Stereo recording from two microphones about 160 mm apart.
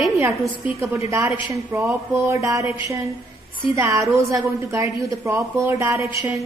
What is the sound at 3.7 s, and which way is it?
A woman's voice, 20° right (ahead or behind).